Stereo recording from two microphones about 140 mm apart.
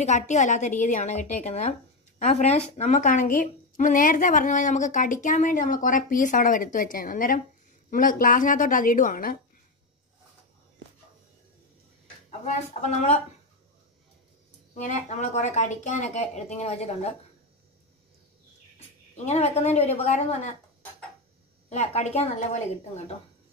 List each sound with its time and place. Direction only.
0.0 s a woman's voice: 55° left (ahead or behind); by 7.4 s 90° left
7.9 s a woman's voice: 75° left (ahead or behind)
12.7 s speech: 50° left (ahead or behind)
14.7 s speech: 55° left (ahead or behind)
19.1 s speech: 50° left (ahead or behind)
21.6 s speech: 55° left (ahead or behind)